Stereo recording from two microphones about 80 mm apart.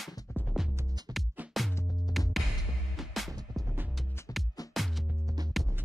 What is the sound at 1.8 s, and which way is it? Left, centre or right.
Music, left.